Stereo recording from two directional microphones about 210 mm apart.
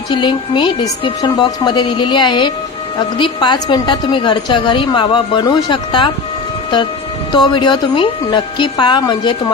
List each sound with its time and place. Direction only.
0.1 s a woman's voice: 20° left (ahead or behind)
7.3 s a woman's voice: 20° left (ahead or behind)